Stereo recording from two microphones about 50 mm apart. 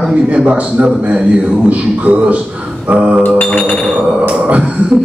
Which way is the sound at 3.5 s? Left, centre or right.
Left.